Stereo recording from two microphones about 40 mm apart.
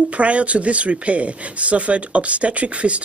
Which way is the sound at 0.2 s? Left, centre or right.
Right.